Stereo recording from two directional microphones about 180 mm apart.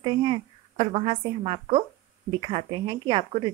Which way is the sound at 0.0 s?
25° right (ahead or behind).